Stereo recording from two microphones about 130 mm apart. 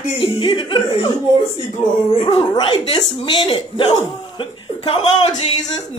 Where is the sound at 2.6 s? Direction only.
45° left (ahead or behind).